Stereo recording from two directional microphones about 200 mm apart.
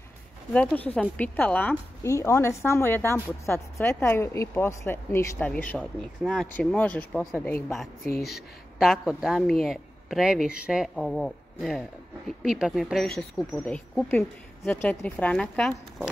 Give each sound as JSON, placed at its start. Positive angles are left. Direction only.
{"t": 0.5, "sound": "a woman's voice", "side_deg": 5}
{"t": 8.1, "sound": "speech", "side_deg": 55}
{"t": 8.7, "sound": "speech", "side_deg": 0}